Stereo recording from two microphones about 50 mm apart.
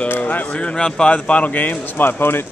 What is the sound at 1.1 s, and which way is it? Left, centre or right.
Speech, left.